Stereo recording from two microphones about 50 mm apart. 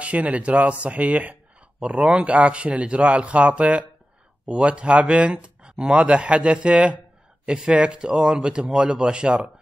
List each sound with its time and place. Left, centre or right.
0.0 s speech: right